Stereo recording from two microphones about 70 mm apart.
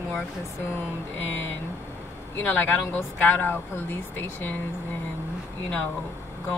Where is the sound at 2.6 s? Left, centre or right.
Left.